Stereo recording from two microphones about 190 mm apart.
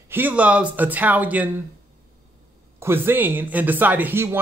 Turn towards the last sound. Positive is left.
turn(degrees=-10)  # may be behind; listen again after turning